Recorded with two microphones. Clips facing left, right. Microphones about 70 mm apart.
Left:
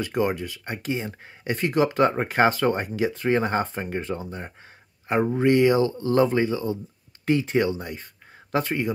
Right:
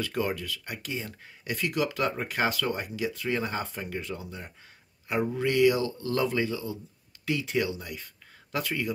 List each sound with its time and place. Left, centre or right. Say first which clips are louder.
0.0 s speech: left 5 dB; left